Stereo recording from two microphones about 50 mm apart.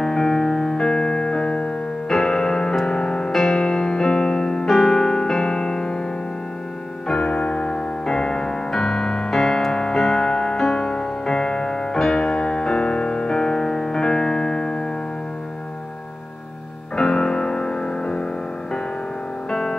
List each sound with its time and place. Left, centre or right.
0.0 s music: centre
3.3 s music: centre
4.6 s music: centre
7.1 s music: left
8.7 s piano: centre
12.0 s music: centre
16.9 s music: centre